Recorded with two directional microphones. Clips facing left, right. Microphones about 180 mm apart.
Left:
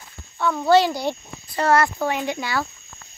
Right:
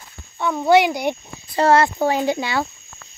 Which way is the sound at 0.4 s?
15° right (ahead or behind).